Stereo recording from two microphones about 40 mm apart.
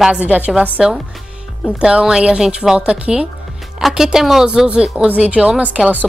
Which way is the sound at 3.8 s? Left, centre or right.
Centre.